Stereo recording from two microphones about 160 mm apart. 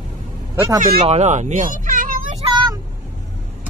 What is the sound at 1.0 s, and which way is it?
Speech, 45° right (ahead or behind).